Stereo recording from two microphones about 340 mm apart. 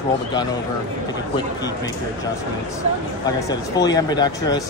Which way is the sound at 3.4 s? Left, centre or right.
Centre.